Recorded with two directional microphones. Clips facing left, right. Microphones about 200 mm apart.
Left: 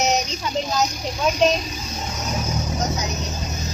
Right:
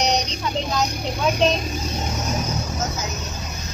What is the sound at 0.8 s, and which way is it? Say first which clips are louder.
Speech: even; 60° right (ahead or behind).